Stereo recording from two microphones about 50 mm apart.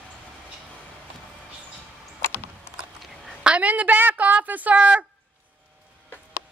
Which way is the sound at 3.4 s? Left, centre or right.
Right.